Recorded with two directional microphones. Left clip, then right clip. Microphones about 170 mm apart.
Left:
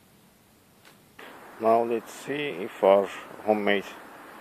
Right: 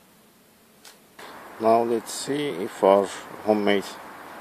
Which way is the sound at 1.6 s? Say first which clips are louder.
Right 2 dB; 10° right (ahead or behind).